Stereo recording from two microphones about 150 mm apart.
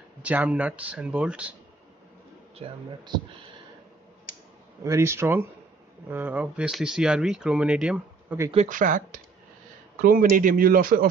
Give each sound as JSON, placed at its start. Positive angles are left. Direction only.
{"t": 0.2, "sound": "speech", "side_deg": -10}
{"t": 2.5, "sound": "speech", "side_deg": -35}
{"t": 4.8, "sound": "speech", "side_deg": -20}
{"t": 8.6, "sound": "speech", "side_deg": -60}